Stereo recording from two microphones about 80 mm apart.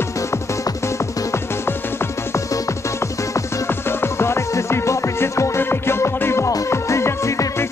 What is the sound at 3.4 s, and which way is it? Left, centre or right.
Music, left.